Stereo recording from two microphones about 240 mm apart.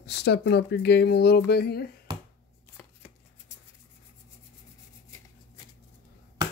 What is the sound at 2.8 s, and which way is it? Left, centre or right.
Chopping, centre.